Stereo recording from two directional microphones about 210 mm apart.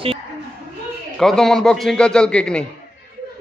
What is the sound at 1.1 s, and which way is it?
A man's voice, centre (ahead or behind).